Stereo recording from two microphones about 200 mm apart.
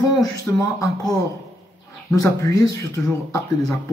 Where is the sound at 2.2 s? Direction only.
15° left (ahead or behind).